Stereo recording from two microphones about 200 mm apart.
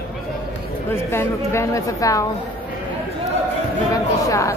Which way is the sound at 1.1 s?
15° left (ahead or behind).